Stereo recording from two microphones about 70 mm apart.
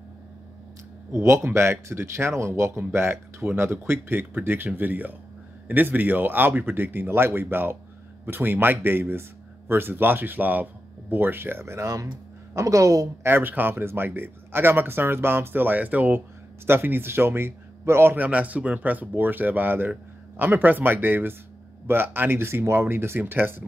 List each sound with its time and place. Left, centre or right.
1.1 s speech: right
12.5 s a woman's voice: right
13.2 s speech: right
18.2 s speech: right